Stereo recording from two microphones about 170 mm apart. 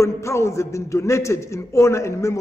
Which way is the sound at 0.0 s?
15° left (ahead or behind).